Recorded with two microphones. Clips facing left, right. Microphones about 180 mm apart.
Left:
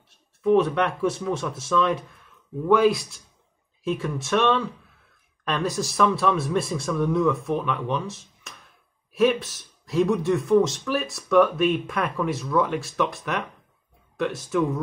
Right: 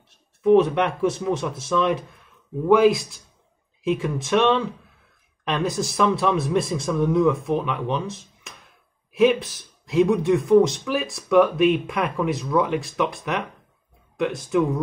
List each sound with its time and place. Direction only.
0.4 s a man's voice: 20° right (ahead or behind)